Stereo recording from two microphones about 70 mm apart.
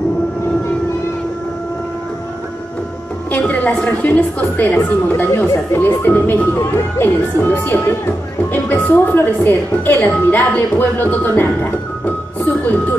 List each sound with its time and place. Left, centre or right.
3.3 s a woman's voice: centre
4.7 s a woman's voice: left
10.0 s a woman's voice: left